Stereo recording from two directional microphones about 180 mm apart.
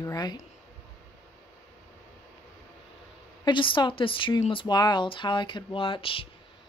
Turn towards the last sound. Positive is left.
turn(degrees=30)  # may be behind; listen again after turning